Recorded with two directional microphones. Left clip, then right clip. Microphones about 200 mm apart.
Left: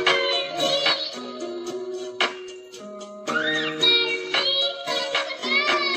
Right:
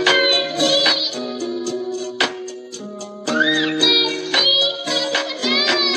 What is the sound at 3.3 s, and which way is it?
Music, 45° right (ahead or behind).